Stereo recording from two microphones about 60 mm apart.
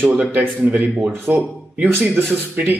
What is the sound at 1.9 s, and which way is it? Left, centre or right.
Speech, right.